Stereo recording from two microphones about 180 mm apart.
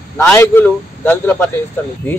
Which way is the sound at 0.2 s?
15° left (ahead or behind).